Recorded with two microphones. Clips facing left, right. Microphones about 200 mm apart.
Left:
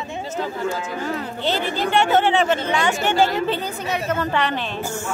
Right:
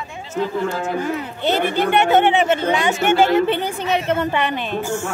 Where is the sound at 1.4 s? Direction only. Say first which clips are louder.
Right 5 dB; 55° right (ahead or behind).